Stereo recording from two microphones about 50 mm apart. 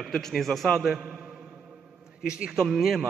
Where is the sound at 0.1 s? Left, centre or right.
Centre.